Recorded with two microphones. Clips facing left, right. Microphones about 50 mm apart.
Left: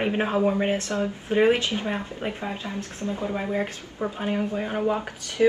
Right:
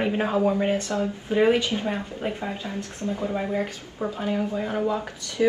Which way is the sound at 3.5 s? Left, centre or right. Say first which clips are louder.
Even; centre.